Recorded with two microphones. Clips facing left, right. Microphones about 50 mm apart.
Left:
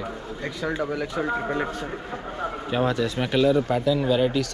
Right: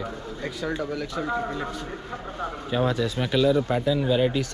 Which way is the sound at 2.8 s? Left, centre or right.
Left.